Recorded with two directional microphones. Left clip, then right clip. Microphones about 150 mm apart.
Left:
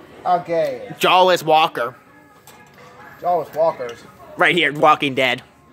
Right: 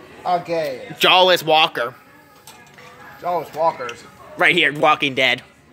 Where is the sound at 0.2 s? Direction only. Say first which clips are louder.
Left 2 dB; 5° left (ahead or behind).